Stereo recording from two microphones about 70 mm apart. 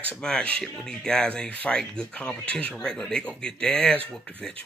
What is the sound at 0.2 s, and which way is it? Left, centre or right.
Speech, centre.